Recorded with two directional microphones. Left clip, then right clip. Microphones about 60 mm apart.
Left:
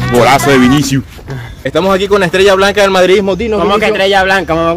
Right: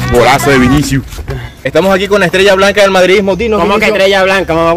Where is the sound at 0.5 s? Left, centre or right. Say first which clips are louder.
Even; left.